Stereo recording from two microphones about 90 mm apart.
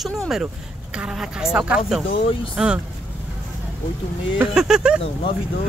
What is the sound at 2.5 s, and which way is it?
Speech, 10° right (ahead or behind).